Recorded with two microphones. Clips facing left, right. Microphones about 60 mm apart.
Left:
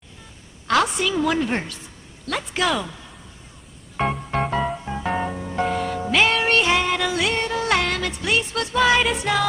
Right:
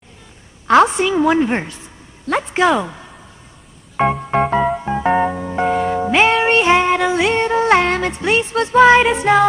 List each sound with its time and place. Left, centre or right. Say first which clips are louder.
0.7 s a woman's voice: right 8 dB; right
2.2 s a sound: right 8 dB; right
4.4 s music: right 7 dB; right
4.6 s music: right 9 dB; right